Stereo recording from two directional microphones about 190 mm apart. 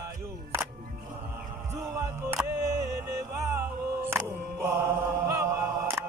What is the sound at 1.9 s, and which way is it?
Music, 15° right (ahead or behind).